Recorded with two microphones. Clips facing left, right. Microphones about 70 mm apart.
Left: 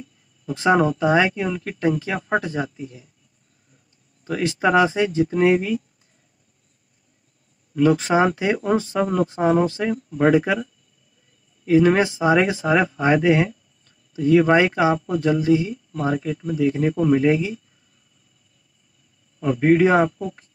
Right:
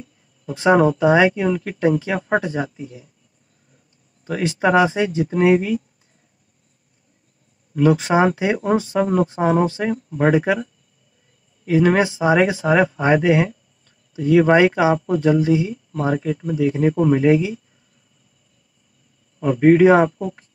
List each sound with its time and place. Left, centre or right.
0.5 s speech: right
4.2 s speech: right
7.7 s speech: centre
19.4 s speech: right